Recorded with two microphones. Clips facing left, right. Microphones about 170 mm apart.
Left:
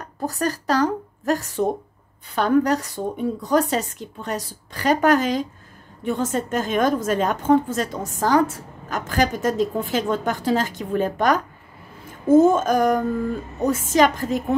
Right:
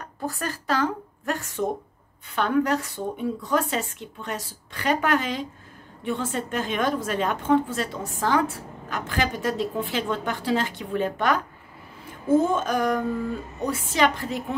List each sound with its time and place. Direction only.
0.2 s a woman's voice: 40° left (ahead or behind)